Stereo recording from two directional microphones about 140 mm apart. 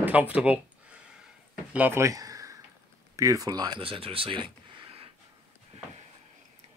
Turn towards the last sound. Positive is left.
turn(degrees=-40)  # may be behind; listen again after turning